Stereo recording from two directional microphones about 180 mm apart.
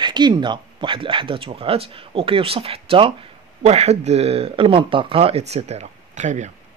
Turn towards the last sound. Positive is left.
turn(degrees=-40)  # may be behind; listen again after turning